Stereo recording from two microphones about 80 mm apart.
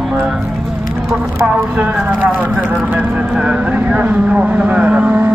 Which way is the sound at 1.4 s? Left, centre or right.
Centre.